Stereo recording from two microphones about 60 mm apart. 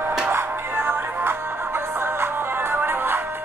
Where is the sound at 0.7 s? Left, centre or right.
Right.